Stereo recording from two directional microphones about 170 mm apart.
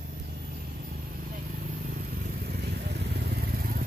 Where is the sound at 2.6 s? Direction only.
70° right (ahead or behind).